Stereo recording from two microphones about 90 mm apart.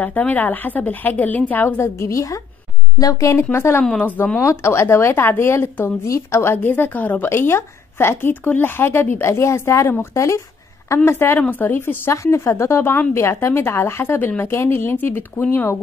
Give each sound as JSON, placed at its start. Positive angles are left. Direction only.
{"t": 0.0, "sound": "a woman's voice", "side_deg": 15}
{"t": 3.8, "sound": "speech", "side_deg": 15}
{"t": 4.4, "sound": "speech", "side_deg": 30}